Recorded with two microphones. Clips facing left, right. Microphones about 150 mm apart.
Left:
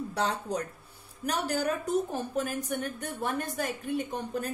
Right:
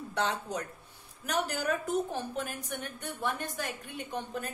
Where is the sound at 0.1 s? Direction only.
35° left (ahead or behind).